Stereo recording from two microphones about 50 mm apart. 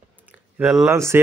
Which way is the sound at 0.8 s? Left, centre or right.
Right.